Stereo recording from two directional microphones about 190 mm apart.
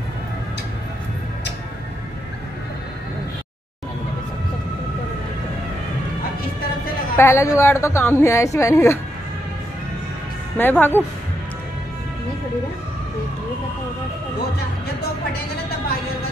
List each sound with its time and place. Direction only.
7.2 s a woman's voice: 15° left (ahead or behind)
10.6 s a woman's voice: 10° left (ahead or behind)